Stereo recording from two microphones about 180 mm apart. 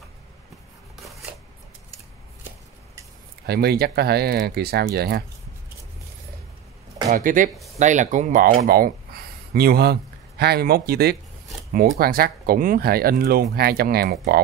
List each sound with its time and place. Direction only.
3.4 s speech: 60° right (ahead or behind)
7.1 s speech: 45° right (ahead or behind)
8.6 s speech: 55° right (ahead or behind)